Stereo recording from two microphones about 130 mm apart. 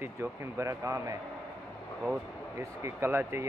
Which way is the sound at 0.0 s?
20° right (ahead or behind).